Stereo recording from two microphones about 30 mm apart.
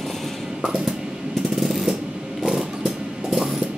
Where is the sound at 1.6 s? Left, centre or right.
Centre.